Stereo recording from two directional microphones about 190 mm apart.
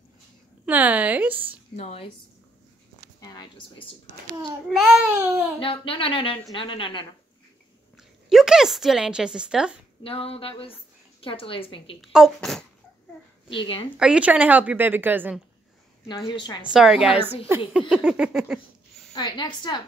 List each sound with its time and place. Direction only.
0.7 s a woman's voice: 10° right (ahead or behind)
1.8 s a woman's voice: 30° left (ahead or behind)
3.2 s a sound: 20° left (ahead or behind)
4.3 s a child's voice: 20° right (ahead or behind)
4.6 s a woman's voice: centre (ahead or behind)
5.1 s a woman's voice: 10° right (ahead or behind)
5.6 s speech: 30° left (ahead or behind)
8.0 s a woman's voice: centre (ahead or behind)
10.0 s speech: 30° left (ahead or behind)
12.0 s a woman's voice: centre (ahead or behind)
13.9 s a woman's voice: 5° right (ahead or behind)
16.3 s speech: 25° left (ahead or behind)
16.6 s a woman's voice: 5° right (ahead or behind)
19.1 s speech: 20° left (ahead or behind)